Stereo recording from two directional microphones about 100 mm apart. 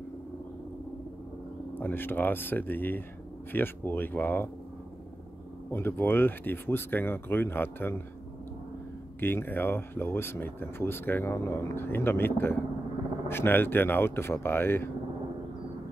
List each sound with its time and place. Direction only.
1.8 s speech: 20° left (ahead or behind)
5.7 s speech: 20° left (ahead or behind)
9.2 s speech: 20° left (ahead or behind)